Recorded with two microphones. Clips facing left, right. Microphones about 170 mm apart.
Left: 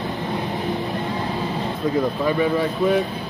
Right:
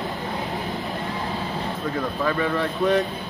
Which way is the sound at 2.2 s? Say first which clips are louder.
Left 4 dB; 15° left (ahead or behind).